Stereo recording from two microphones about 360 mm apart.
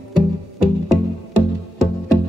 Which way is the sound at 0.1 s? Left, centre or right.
Right.